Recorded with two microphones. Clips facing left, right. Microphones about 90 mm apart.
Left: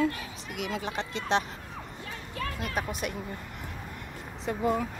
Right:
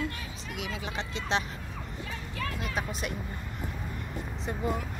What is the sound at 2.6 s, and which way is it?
Speech, 50° left (ahead or behind).